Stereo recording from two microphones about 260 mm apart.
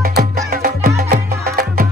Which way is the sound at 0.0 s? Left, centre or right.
Right.